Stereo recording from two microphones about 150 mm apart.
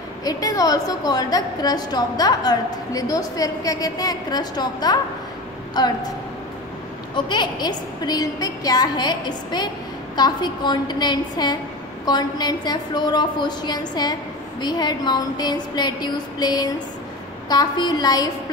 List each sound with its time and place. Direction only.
0.2 s a woman's voice: 25° left (ahead or behind)
7.2 s a woman's voice: 30° left (ahead or behind)